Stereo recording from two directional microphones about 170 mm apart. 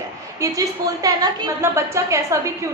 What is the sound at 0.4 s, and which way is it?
A woman's voice, 20° right (ahead or behind).